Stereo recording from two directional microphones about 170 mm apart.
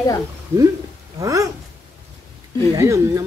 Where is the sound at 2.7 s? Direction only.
20° right (ahead or behind).